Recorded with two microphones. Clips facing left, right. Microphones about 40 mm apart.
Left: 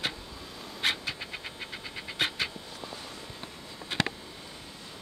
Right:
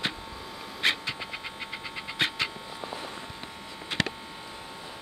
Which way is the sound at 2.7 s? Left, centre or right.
Right.